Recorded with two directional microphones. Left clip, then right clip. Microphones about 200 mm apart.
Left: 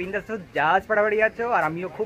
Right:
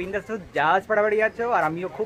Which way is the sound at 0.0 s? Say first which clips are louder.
Even; 5° left (ahead or behind).